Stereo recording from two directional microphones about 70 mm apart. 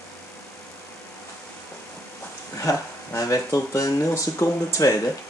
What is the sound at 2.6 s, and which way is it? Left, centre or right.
Speech, left.